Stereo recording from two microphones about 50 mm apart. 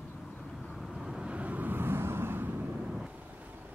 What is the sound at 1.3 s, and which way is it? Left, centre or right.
Vehicle, right.